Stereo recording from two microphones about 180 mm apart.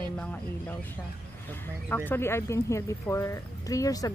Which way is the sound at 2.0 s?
15° left (ahead or behind).